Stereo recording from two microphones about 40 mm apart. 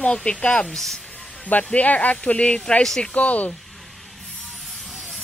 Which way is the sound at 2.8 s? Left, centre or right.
Centre.